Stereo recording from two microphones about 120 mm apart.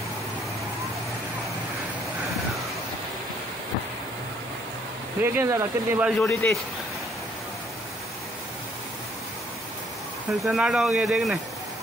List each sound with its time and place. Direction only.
5.2 s speech: 20° right (ahead or behind)
6.1 s a man's voice: 10° left (ahead or behind)
10.4 s speech: centre (ahead or behind)